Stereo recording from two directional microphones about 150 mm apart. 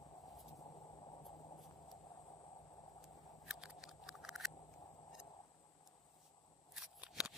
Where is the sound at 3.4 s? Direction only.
5° right (ahead or behind).